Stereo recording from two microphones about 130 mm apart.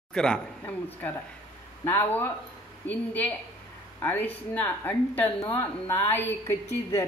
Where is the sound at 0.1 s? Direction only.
5° left (ahead or behind).